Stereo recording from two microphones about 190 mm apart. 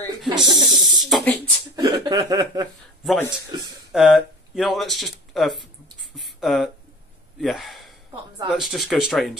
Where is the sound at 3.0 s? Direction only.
Centre (ahead or behind).